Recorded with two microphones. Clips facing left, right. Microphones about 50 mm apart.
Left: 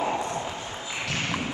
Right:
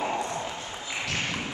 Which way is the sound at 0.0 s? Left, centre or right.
Centre.